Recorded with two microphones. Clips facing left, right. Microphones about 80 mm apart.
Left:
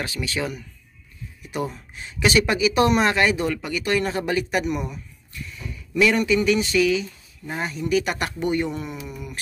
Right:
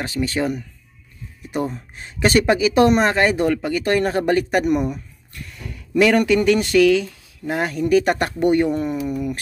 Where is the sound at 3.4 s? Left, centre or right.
Right.